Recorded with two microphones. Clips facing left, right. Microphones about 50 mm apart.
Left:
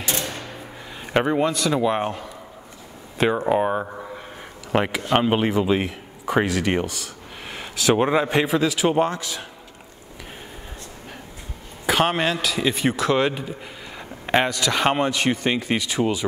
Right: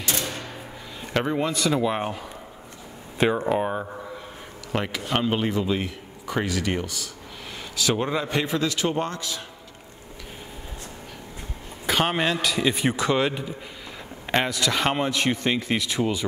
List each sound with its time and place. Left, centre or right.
0.0 s music: centre
1.0 s a man's voice: centre
1.4 s a man's voice: centre; by 6.9 s left
7.5 s a sound: centre
7.9 s a man's voice: left
8.5 s a man's voice: centre
11.8 s a man's voice: centre
14.2 s a sound: centre
14.5 s a man's voice: centre